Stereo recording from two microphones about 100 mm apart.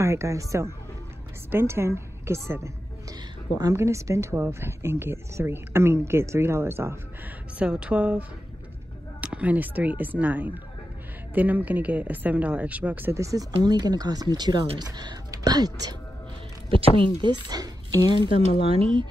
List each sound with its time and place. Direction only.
0.0 s a woman's voice: 30° right (ahead or behind)
7.5 s speech: 10° right (ahead or behind)
13.1 s speech: 30° right (ahead or behind)
16.7 s speech: 60° right (ahead or behind)